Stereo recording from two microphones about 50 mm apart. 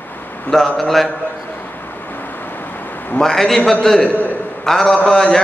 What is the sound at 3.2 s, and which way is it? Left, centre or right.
Speech, centre.